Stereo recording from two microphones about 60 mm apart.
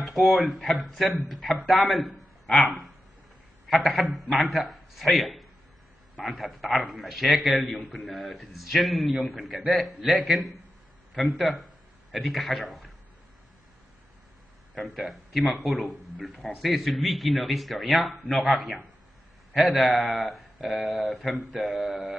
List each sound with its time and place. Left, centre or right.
0.0 s a man's voice: centre
14.8 s speech: centre